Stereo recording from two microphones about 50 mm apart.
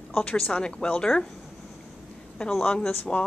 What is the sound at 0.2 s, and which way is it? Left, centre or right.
A woman's voice, centre.